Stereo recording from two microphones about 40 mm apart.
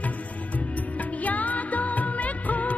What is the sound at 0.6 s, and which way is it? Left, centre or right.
Music, left.